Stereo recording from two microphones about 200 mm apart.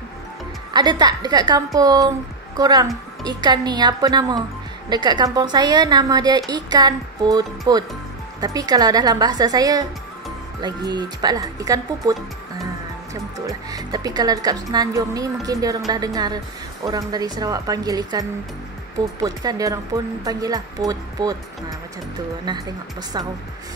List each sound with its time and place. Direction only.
0.7 s a woman's voice: 20° right (ahead or behind)
10.9 s a woman's voice: 20° right (ahead or behind)
19.2 s a woman's voice: 20° right (ahead or behind)